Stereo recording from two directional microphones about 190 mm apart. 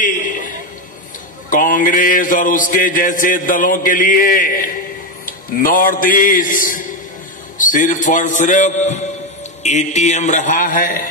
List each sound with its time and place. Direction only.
1.5 s a man's voice: 45° left (ahead or behind)